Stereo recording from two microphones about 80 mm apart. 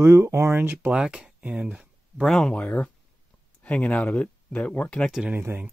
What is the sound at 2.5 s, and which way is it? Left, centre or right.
Speech, centre.